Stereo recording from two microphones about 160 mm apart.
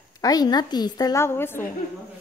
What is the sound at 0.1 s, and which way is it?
A woman's voice, 25° left (ahead or behind).